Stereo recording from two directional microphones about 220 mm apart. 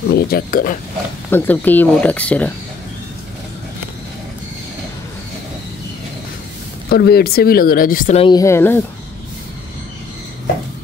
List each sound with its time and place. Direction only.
0.1 s speech: 45° left (ahead or behind)
1.3 s speech: 10° left (ahead or behind)
6.9 s speech: 45° left (ahead or behind)
8.2 s speech: 20° left (ahead or behind)